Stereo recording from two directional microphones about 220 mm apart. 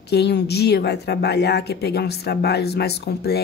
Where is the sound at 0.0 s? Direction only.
50° left (ahead or behind).